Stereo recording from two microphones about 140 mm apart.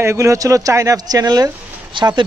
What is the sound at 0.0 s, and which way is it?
Speech, 20° right (ahead or behind).